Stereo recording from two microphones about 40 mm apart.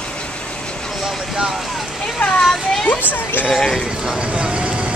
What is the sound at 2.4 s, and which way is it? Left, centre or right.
Speech, centre.